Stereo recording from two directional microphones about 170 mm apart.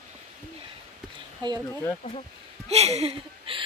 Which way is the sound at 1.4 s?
25° right (ahead or behind).